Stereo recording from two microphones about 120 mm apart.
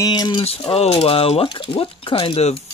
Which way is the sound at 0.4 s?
50° left (ahead or behind).